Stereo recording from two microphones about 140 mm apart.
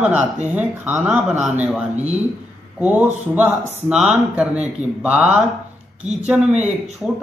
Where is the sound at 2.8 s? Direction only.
10° right (ahead or behind).